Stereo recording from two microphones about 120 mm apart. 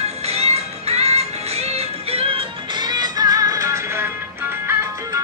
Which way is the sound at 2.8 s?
35° right (ahead or behind).